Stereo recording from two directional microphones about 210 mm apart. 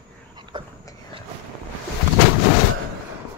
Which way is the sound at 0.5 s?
20° right (ahead or behind).